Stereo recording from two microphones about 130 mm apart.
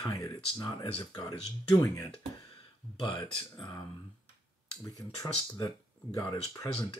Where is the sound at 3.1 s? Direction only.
40° left (ahead or behind).